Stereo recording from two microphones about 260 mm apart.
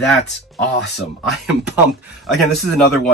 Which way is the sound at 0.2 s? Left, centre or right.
Left.